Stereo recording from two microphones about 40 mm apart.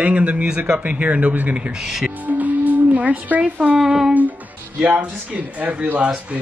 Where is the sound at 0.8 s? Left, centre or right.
Right.